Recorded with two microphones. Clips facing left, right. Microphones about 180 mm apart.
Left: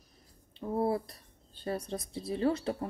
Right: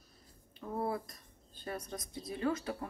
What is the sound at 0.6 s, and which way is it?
Speech, 30° left (ahead or behind).